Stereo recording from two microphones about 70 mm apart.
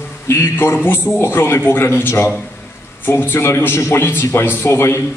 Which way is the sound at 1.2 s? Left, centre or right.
Left.